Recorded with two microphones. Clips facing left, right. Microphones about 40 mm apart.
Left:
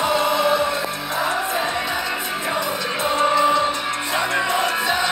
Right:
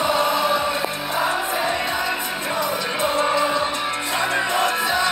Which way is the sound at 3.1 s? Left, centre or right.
Centre.